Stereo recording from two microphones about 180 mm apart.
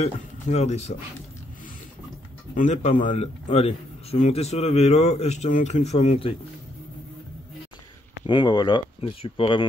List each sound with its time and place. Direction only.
0.0 s speech: 40° left (ahead or behind)
2.5 s speech: 40° left (ahead or behind)
3.4 s speech: 35° left (ahead or behind)
8.3 s speech: 25° left (ahead or behind)